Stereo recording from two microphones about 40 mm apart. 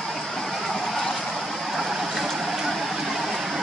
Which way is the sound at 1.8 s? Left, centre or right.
Centre.